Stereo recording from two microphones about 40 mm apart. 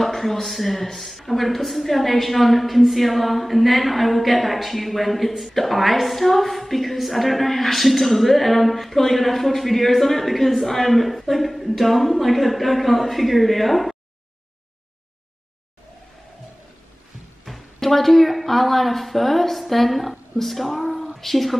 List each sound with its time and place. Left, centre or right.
0.0 s a woman's voice: centre
17.5 s a woman's voice: centre